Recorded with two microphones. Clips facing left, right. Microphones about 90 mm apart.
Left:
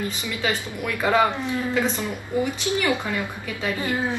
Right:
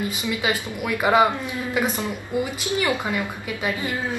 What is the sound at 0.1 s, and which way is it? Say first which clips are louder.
A woman's voice: right 2 dB; 15° right (ahead or behind).